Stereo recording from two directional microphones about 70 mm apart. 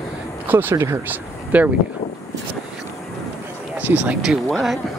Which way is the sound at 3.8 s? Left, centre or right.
Right.